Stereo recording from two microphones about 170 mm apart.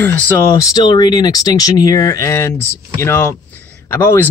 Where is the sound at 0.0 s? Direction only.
15° left (ahead or behind).